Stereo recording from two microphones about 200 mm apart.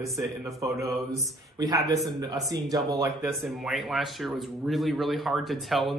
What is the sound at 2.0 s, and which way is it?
Speech, 20° right (ahead or behind).